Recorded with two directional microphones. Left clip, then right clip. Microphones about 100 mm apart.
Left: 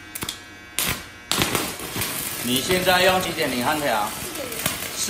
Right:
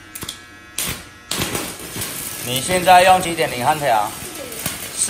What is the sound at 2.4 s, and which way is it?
A man's voice, 10° left (ahead or behind).